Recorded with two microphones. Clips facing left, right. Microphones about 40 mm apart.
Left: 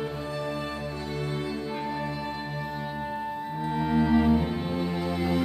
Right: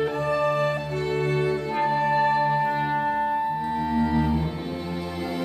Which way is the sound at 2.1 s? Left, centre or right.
Right.